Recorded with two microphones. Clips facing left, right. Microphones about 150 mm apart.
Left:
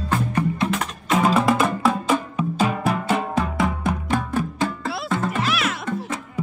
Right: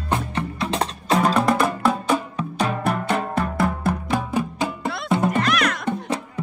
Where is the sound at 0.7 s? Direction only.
30° right (ahead or behind).